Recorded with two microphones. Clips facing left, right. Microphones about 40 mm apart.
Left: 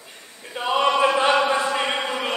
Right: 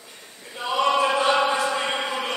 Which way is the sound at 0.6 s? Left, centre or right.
Left.